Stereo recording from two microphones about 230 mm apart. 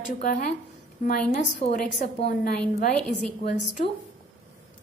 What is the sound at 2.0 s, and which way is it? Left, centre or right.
Speech, left.